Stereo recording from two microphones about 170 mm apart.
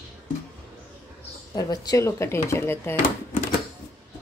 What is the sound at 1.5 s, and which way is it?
Speech, 20° left (ahead or behind).